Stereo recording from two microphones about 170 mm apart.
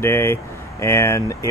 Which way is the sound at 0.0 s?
15° left (ahead or behind).